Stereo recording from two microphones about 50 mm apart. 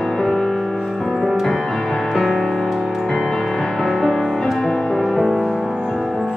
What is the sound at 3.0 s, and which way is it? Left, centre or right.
Music, centre.